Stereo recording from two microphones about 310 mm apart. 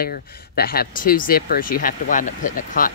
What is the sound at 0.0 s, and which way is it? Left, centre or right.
Speech, left.